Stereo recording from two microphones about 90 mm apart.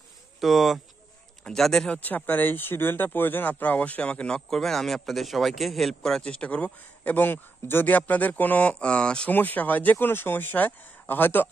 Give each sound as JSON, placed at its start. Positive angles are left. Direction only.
{"t": 0.4, "sound": "speech", "side_deg": 0}
{"t": 2.0, "sound": "speech", "side_deg": 20}